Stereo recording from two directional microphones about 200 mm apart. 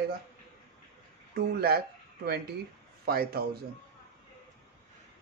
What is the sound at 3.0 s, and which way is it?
Speech, 50° right (ahead or behind).